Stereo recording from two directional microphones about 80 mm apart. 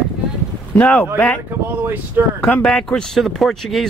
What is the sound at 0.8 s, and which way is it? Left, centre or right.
Speech, centre.